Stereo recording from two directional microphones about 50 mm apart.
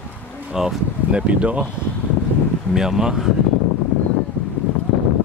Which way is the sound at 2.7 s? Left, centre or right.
Centre.